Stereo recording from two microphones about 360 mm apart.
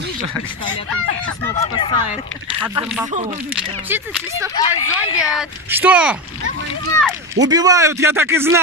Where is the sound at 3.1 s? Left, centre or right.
Centre.